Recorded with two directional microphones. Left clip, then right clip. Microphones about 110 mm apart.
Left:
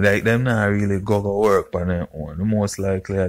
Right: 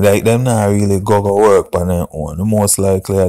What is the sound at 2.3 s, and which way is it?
Speech, 30° right (ahead or behind).